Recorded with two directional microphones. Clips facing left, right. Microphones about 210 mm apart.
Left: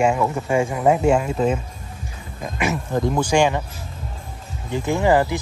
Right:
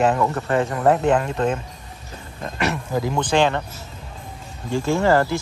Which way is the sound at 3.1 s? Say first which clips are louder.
Left 1 dB; 10° left (ahead or behind).